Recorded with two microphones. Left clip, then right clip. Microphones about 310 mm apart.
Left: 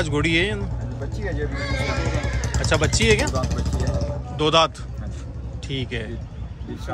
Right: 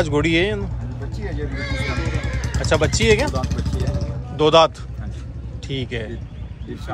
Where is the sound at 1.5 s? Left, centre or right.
Centre.